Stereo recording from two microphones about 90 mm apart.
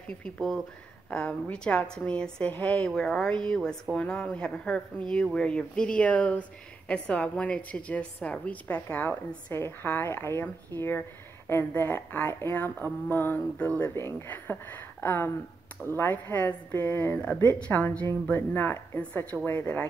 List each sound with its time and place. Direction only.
0.2 s a woman's voice: 5° left (ahead or behind)
2.5 s speech: 20° left (ahead or behind)
2.8 s a woman's voice: 5° left (ahead or behind)
13.9 s speech: 25° left (ahead or behind)